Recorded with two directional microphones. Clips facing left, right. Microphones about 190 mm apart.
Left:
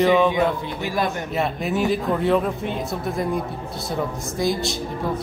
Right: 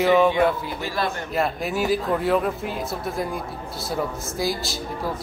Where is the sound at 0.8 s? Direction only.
15° left (ahead or behind).